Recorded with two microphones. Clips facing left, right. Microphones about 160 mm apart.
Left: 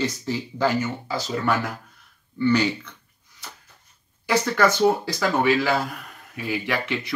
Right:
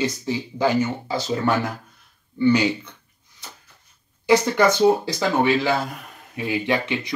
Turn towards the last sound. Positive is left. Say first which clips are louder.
# right 3 dB
turn(degrees=-20)  # may be behind; listen again after turning